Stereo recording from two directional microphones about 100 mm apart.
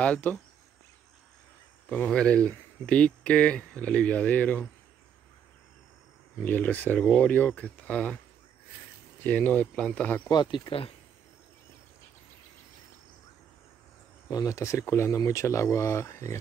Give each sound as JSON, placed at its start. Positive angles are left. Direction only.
{"t": 0.0, "sound": "speech", "side_deg": 15}
{"t": 1.9, "sound": "speech", "side_deg": 15}
{"t": 6.4, "sound": "speech", "side_deg": 15}
{"t": 9.2, "sound": "speech", "side_deg": 15}
{"t": 10.2, "sound": "speech", "side_deg": 50}
{"t": 14.3, "sound": "speech", "side_deg": 35}